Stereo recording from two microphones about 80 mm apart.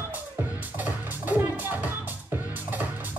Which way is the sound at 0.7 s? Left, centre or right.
Right.